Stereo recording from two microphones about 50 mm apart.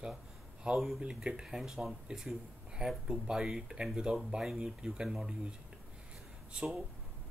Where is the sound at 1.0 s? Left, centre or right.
Centre.